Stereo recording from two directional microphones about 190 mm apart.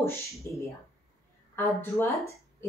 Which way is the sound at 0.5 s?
10° left (ahead or behind).